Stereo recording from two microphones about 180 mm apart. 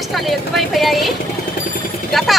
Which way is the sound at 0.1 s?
Centre (ahead or behind).